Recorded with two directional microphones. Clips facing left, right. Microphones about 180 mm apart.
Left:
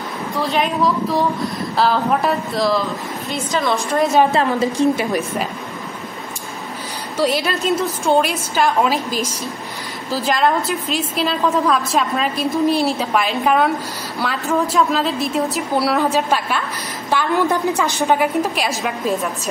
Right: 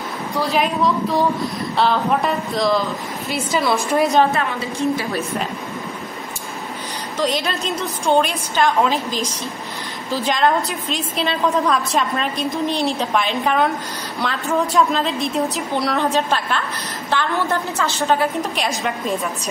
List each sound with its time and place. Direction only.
0.4 s a woman's voice: centre (ahead or behind)
3.9 s a woman's voice: centre (ahead or behind)
4.3 s a woman's voice: 35° left (ahead or behind)
7.2 s a woman's voice: 10° left (ahead or behind)
18.7 s a woman's voice: 5° left (ahead or behind)